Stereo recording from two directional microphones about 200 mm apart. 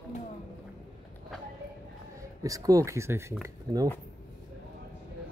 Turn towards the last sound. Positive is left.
turn(degrees=-20)  # may be behind; listen again after turning